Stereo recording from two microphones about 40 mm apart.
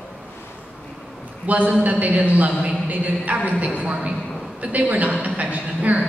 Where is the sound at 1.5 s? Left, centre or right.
Right.